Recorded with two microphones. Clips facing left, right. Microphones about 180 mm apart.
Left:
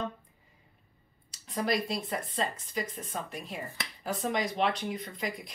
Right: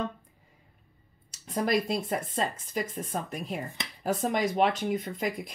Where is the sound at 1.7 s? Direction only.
50° right (ahead or behind).